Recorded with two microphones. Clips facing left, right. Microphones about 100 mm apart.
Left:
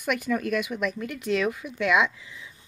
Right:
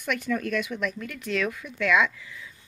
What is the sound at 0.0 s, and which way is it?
Speech, 10° left (ahead or behind).